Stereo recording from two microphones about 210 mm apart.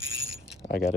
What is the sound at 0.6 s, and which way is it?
Speech, 45° left (ahead or behind).